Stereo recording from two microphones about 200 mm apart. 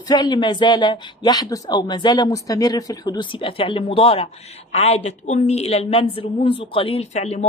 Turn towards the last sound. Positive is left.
turn(degrees=35)  # may be behind; listen again after turning